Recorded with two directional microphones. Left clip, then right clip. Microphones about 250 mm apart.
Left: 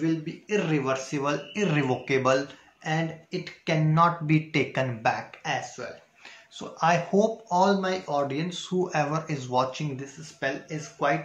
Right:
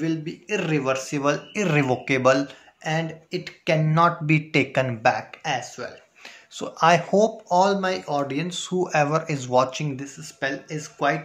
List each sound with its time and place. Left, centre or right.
0.0 s speech: right